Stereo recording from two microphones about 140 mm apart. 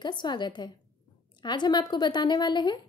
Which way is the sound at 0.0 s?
30° left (ahead or behind).